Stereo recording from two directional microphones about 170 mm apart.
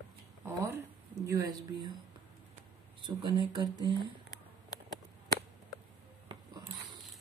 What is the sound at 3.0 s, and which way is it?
Speech, 30° right (ahead or behind).